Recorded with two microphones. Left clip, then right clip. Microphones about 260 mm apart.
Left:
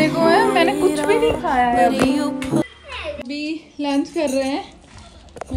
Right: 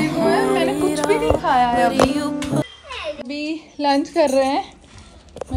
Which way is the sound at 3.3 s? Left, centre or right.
Right.